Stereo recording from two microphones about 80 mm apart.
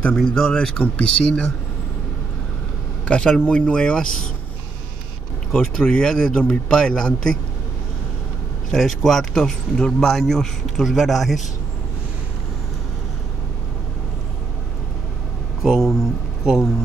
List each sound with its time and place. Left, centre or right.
0.3 s a man's voice: centre
3.1 s a man's voice: centre
5.5 s a man's voice: centre
8.6 s speech: centre
15.6 s speech: centre